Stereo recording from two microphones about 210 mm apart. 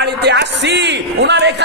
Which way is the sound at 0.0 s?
55° right (ahead or behind).